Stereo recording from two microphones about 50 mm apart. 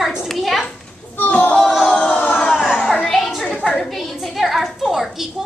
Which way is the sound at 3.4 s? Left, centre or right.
Centre.